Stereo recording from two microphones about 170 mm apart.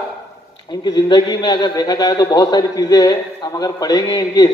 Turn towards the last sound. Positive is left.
turn(degrees=20)  # may be behind; listen again after turning